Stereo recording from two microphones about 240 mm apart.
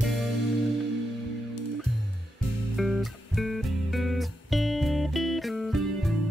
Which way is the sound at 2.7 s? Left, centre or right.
Centre.